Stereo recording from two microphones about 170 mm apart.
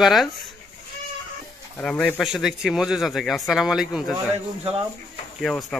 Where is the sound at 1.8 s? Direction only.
5° left (ahead or behind).